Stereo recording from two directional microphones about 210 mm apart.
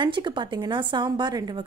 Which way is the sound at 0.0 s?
20° right (ahead or behind).